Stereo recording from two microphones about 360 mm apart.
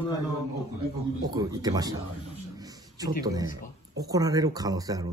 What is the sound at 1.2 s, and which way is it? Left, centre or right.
Speech, centre.